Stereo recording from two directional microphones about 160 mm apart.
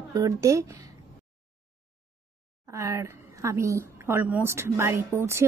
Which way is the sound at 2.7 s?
20° right (ahead or behind).